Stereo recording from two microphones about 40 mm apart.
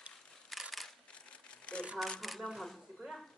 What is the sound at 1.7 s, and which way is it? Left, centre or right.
Shuffling cards, left.